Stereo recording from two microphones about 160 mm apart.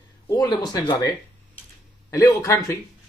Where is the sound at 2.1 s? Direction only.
20° left (ahead or behind).